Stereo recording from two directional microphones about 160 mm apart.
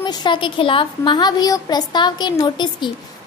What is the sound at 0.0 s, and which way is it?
A woman's voice, 30° left (ahead or behind).